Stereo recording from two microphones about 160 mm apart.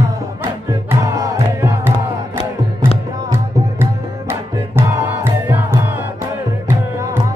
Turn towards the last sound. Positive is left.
turn(degrees=-15)  # may be behind; listen again after turning